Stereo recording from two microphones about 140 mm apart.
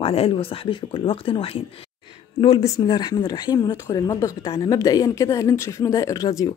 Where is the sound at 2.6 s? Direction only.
25° left (ahead or behind).